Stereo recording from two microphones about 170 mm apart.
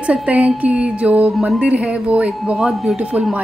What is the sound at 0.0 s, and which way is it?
A woman's voice, 5° right (ahead or behind).